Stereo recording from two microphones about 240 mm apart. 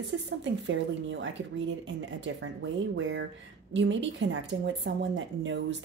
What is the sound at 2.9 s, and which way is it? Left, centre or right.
Speech, right.